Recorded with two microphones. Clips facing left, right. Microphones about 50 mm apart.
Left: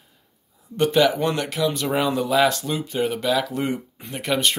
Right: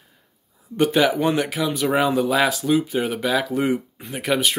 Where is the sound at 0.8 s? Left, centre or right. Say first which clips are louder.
Even; centre.